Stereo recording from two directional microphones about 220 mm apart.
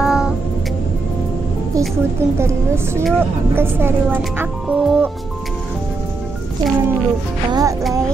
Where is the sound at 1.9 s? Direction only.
10° right (ahead or behind).